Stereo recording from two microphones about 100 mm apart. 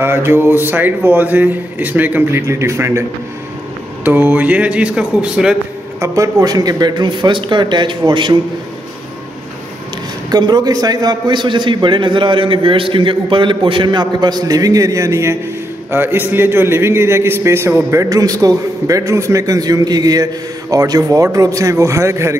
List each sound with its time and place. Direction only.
0.0 s a man's voice: 25° right (ahead or behind)
2.4 s a man's voice: 30° right (ahead or behind)
4.0 s speech: 15° right (ahead or behind)
5.9 s a man's voice: 30° right (ahead or behind); by 8.4 s 50° right (ahead or behind)
10.3 s a man's voice: 40° right (ahead or behind); by 18.0 s 25° right (ahead or behind)
18.1 s a man's voice: 35° right (ahead or behind)